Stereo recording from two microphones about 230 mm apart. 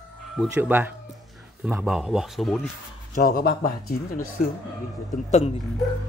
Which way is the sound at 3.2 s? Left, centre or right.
Left.